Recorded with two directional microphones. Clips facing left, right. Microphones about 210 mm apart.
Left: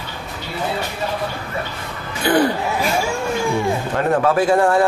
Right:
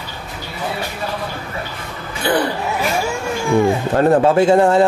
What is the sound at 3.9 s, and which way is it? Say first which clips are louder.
Speech: right 5 dB; 30° right (ahead or behind).